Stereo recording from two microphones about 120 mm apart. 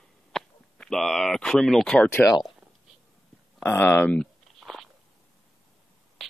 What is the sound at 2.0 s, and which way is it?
Speech, 20° left (ahead or behind).